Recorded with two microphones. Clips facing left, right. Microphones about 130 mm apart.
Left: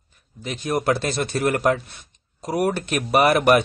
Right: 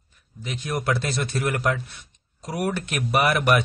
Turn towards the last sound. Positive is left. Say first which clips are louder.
# left 4 dB
turn(degrees=40)  # may be behind; listen again after turning